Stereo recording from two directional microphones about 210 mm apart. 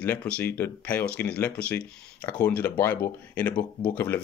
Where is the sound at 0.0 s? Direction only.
5° left (ahead or behind).